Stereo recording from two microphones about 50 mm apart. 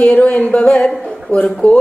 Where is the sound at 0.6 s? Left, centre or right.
Centre.